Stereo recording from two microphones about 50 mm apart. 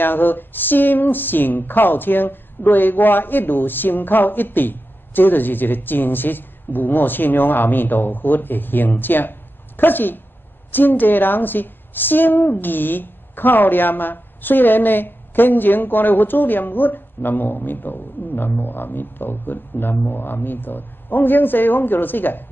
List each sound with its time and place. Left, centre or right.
0.0 s speech: left